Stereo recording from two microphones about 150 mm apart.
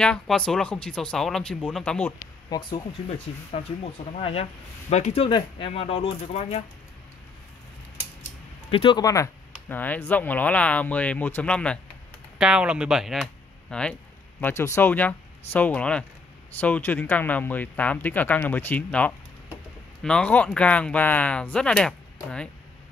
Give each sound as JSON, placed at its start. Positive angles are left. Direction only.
{"t": 0.0, "sound": "speech", "side_deg": 5}
{"t": 2.5, "sound": "speech", "side_deg": 25}
{"t": 4.2, "sound": "speech", "side_deg": 40}
{"t": 8.6, "sound": "speech", "side_deg": 35}
{"t": 9.0, "sound": "speech", "side_deg": 20}
{"t": 12.4, "sound": "speech", "side_deg": -5}
{"t": 14.4, "sound": "speech", "side_deg": 20}